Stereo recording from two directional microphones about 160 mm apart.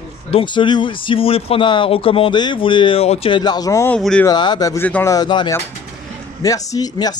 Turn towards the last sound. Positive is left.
turn(degrees=25)  # may be behind; listen again after turning